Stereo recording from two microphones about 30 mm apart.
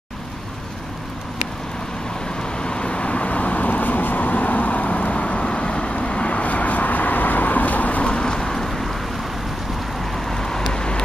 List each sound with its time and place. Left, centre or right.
2.4 s vehicle: left
5.4 s vehicle: left
8.0 s vehicle: left; by 8.9 s centre
10.1 s vehicle: centre